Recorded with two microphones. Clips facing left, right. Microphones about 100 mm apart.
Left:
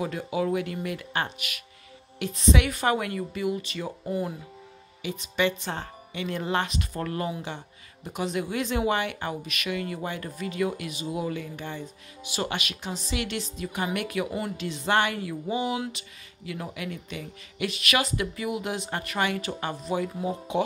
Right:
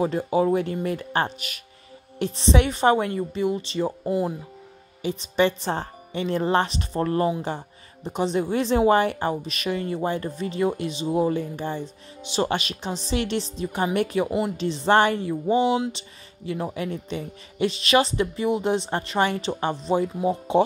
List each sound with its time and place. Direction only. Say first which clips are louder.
0.0 s speech: right 6 dB; 35° right (ahead or behind)